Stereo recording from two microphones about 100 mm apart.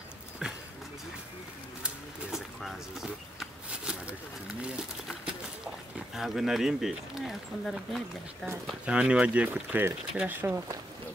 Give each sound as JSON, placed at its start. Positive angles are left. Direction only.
{"t": 0.4, "sound": "clip-clop", "side_deg": -5}
{"t": 2.3, "sound": "a sound", "side_deg": 0}
{"t": 5.9, "sound": "speech", "side_deg": -5}
{"t": 8.8, "sound": "speech", "side_deg": -10}